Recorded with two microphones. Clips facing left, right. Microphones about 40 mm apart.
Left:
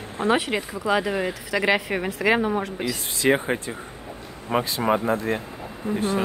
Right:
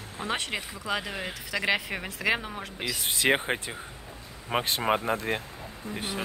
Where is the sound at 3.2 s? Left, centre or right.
Centre.